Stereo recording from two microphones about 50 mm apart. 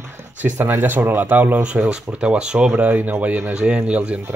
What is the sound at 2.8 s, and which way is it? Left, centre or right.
Speech, right.